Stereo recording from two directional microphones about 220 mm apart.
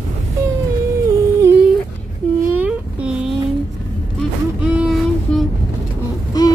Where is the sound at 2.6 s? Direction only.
5° right (ahead or behind).